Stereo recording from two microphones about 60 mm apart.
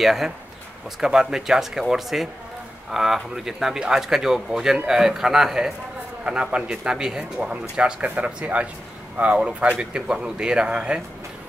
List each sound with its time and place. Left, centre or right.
0.0 s speech: centre